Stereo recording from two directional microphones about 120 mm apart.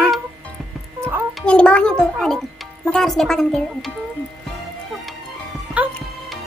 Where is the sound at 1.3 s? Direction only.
10° left (ahead or behind).